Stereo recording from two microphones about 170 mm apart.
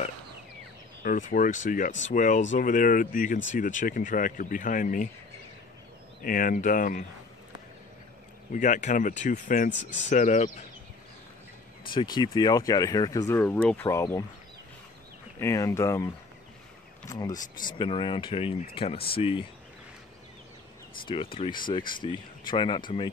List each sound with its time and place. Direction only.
1.0 s speech: 50° left (ahead or behind)
6.2 s speech: 55° left (ahead or behind)
8.5 s speech: 50° left (ahead or behind)
9.7 s speech: 90° left
10.0 s speech: 45° left (ahead or behind)
11.9 s speech: 25° left (ahead or behind)
15.3 s speech: 20° left (ahead or behind)
17.3 s speech: 50° left (ahead or behind)
17.7 s speech: 30° left (ahead or behind)
21.1 s speech: 30° left (ahead or behind)